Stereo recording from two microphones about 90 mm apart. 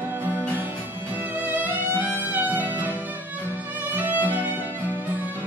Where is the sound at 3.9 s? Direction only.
20° right (ahead or behind).